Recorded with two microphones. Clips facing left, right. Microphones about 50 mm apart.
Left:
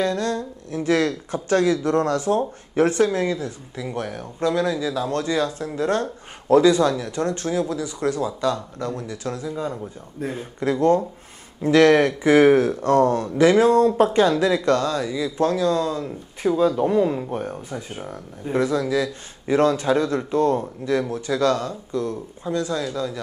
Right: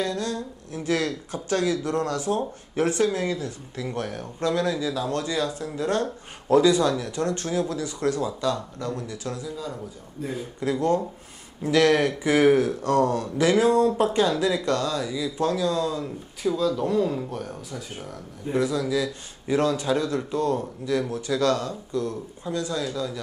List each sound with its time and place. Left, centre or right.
0.0 s speech: left
3.9 s speech: left
15.0 s speech: left
15.6 s speech: left